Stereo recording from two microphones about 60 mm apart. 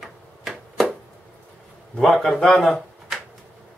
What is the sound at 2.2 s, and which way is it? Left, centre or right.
Speech, centre.